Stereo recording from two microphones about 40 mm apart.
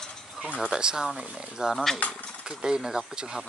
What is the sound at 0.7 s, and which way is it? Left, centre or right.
Speech, centre.